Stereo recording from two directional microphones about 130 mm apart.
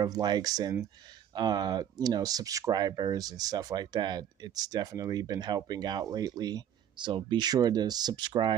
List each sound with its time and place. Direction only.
0.0 s speech: 30° right (ahead or behind)